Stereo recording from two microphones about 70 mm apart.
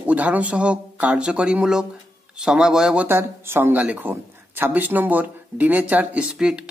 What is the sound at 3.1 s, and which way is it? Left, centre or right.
Speech, right.